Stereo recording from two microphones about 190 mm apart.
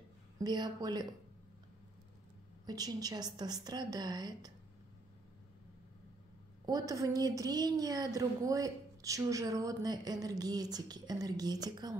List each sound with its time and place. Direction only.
0.4 s a woman's voice: 20° right (ahead or behind)
2.6 s a woman's voice: 20° right (ahead or behind)
6.6 s a woman's voice: 20° right (ahead or behind)